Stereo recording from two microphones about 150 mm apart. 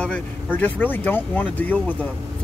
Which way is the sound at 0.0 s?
10° left (ahead or behind).